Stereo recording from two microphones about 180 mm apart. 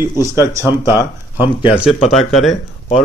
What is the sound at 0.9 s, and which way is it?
Speech, 25° left (ahead or behind).